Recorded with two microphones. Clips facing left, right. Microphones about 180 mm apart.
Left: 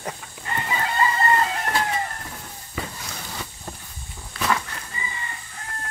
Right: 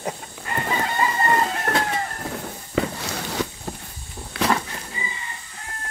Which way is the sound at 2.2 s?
70° right (ahead or behind).